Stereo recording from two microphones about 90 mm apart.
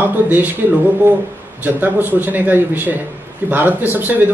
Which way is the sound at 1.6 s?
20° right (ahead or behind).